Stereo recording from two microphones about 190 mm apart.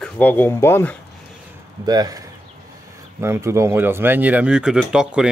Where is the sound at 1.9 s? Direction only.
20° right (ahead or behind).